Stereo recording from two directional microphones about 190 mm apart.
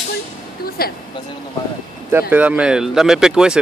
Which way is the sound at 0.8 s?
55° left (ahead or behind).